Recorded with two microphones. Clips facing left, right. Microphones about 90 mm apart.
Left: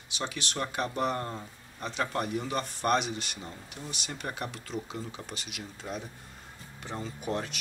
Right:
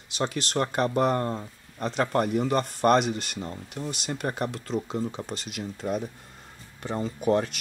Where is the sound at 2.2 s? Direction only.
50° right (ahead or behind).